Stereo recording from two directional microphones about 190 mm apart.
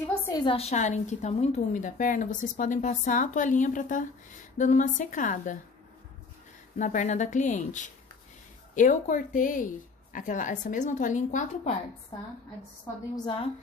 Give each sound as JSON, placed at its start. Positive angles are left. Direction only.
{"t": 0.3, "sound": "a woman's voice", "side_deg": 25}
{"t": 6.8, "sound": "a woman's voice", "side_deg": 40}
{"t": 13.1, "sound": "a woman's voice", "side_deg": 25}